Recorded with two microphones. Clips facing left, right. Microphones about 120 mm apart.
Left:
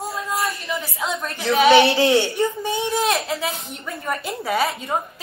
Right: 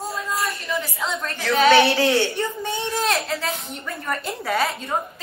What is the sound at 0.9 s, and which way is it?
A woman's voice, 10° left (ahead or behind).